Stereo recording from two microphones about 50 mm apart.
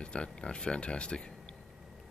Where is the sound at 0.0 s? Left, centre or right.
Left.